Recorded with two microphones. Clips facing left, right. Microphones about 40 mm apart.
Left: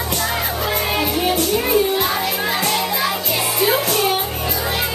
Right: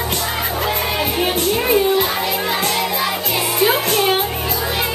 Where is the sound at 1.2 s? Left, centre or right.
Right.